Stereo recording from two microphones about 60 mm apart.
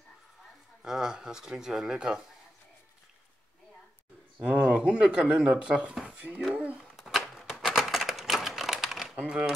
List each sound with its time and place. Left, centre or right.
0.8 s speech: centre
4.4 s speech: right
6.0 s a sound: right
6.5 s speech: right
6.8 s typewriter: centre
9.2 s speech: centre